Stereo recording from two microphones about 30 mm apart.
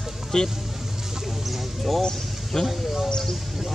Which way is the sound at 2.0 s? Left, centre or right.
Centre.